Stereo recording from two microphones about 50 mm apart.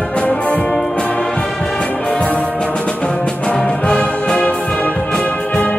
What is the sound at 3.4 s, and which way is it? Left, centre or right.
Music, centre.